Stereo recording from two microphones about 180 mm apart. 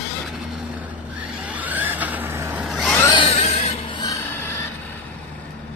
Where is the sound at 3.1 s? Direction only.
35° left (ahead or behind).